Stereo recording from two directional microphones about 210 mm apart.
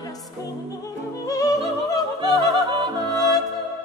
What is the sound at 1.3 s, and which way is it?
Music, 15° left (ahead or behind).